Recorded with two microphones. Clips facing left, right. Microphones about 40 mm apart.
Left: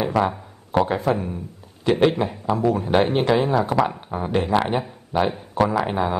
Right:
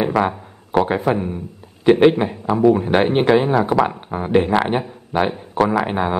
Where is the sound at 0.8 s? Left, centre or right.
Right.